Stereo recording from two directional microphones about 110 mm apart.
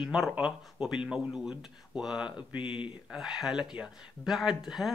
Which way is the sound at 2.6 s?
50° left (ahead or behind).